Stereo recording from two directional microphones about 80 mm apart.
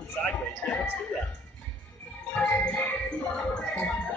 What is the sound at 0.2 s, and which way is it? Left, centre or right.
Speech, left.